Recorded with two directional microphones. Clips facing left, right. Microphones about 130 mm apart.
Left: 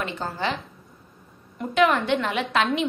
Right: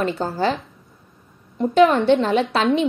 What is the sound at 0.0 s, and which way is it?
Speech, 35° right (ahead or behind).